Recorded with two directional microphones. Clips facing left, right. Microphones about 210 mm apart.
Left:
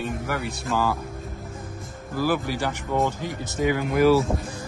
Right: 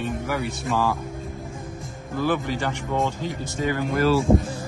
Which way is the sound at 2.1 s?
5° left (ahead or behind).